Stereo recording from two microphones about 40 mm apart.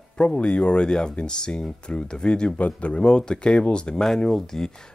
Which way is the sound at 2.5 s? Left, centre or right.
Left.